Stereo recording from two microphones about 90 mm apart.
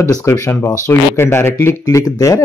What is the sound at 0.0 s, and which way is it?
Speech, 35° left (ahead or behind).